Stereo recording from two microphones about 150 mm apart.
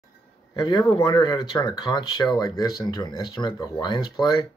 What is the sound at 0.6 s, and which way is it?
Speech, 30° left (ahead or behind).